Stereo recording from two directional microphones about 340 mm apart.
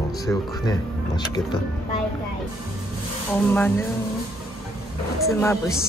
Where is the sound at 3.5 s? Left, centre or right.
Centre.